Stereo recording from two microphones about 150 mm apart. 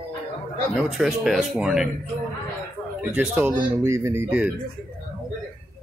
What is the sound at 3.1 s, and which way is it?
Speech, 10° right (ahead or behind).